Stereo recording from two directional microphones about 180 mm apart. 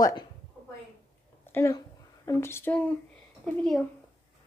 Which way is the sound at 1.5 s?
15° left (ahead or behind).